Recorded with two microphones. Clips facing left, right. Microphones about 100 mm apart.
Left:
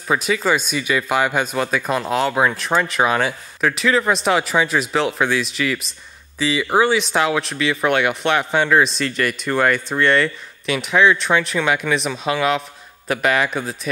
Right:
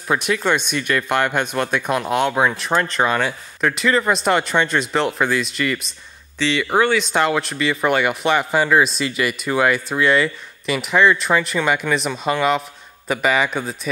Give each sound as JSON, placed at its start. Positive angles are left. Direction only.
{"t": 0.1, "sound": "speech", "side_deg": 0}